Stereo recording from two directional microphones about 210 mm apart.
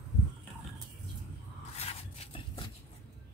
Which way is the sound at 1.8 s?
25° left (ahead or behind).